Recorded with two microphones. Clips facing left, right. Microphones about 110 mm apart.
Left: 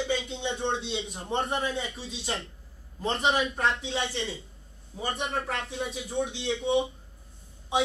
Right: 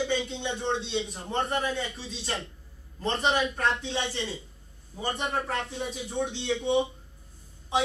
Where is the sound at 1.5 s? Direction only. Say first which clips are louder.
Right 1 dB; 25° left (ahead or behind).